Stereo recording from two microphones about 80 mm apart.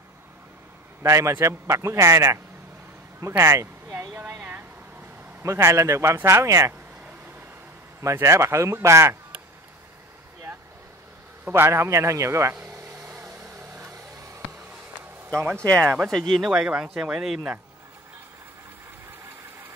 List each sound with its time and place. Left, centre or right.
1.0 s a man's voice: right
3.2 s a sound: right
4.2 s a sound: right
5.4 s a man's voice: right
8.0 s a man's voice: right
11.4 s a man's voice: right
12.8 s vehicle: right
15.8 s speech: centre